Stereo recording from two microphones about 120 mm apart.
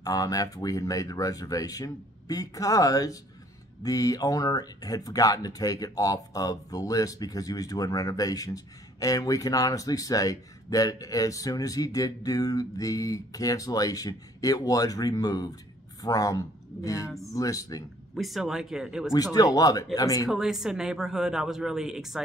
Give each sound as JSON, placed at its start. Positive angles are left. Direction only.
{"t": 0.0, "sound": "speech", "side_deg": 30}
{"t": 18.1, "sound": "speech", "side_deg": 0}
{"t": 19.1, "sound": "speech", "side_deg": 30}
{"t": 20.2, "sound": "speech", "side_deg": -5}